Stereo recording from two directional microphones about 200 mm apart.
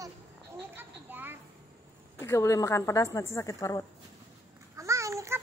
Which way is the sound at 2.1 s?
15° left (ahead or behind).